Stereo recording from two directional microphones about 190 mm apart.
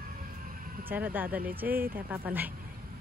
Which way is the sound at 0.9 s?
10° right (ahead or behind).